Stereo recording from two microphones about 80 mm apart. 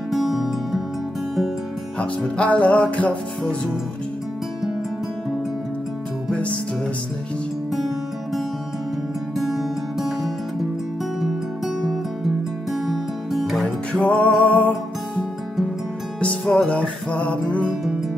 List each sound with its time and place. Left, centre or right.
0.1 s music: centre
2.0 s music: centre
6.3 s music: centre
9.4 s music: centre
13.9 s music: centre
16.2 s music: centre